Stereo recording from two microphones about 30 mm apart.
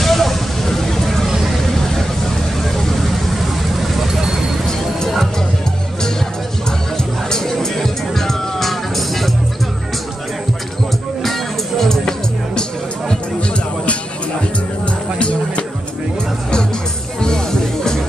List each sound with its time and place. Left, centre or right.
0.0 s vehicle: centre
3.9 s vehicle: centre
7.2 s music: left
7.5 s music: centre
11.8 s music: centre
15.1 s music: left
17.2 s music: left